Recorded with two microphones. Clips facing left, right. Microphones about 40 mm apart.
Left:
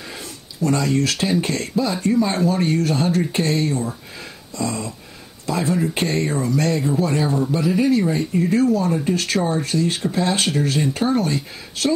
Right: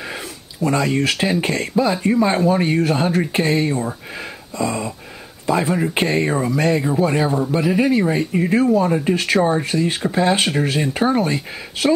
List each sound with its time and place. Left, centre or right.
0.1 s speech: centre